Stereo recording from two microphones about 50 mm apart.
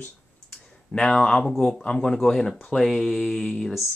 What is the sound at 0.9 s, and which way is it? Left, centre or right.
Speech, centre.